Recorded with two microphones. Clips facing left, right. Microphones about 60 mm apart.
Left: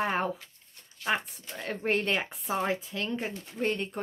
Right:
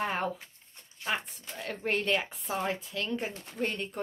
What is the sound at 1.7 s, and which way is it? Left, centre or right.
Speech, centre.